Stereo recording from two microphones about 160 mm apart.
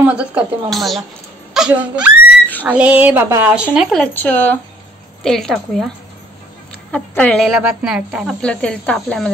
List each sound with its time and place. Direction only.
0.0 s speech: 10° right (ahead or behind)
3.7 s speech: centre (ahead or behind)
6.9 s speech: 5° left (ahead or behind)